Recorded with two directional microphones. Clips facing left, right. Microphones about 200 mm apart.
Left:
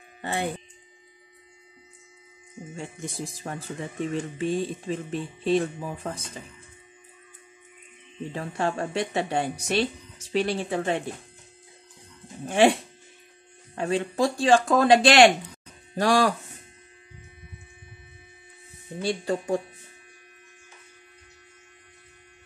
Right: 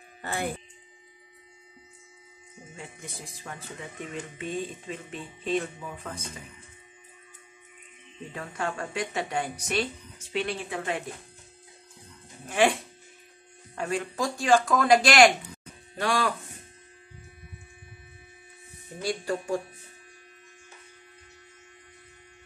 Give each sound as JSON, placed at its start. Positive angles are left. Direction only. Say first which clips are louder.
{"t": 0.2, "sound": "speech", "louder": "left 3 dB", "side_deg": 25}
{"t": 2.7, "sound": "speech", "louder": "left 7 dB", "side_deg": 30}
{"t": 8.3, "sound": "a woman's voice", "louder": "left 5 dB", "side_deg": 30}
{"t": 12.4, "sound": "speech", "louder": "left 4 dB", "side_deg": 30}
{"t": 13.7, "sound": "a woman's voice", "louder": "left 5 dB", "side_deg": 30}
{"t": 18.9, "sound": "a woman's voice", "louder": "left 3 dB", "side_deg": 25}